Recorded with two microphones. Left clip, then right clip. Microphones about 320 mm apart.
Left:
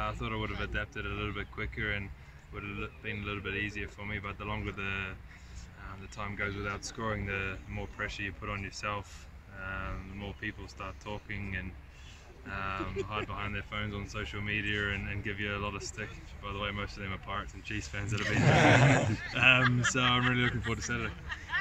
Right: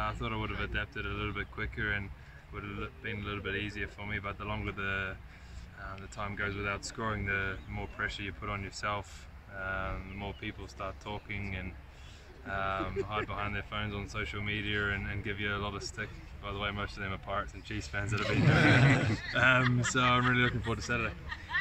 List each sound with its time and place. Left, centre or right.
0.0 s speech: centre
6.1 s speech: centre
18.6 s speech: centre
19.1 s speech: centre